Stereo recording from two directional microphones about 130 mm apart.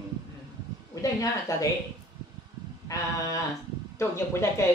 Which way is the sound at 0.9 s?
25° left (ahead or behind).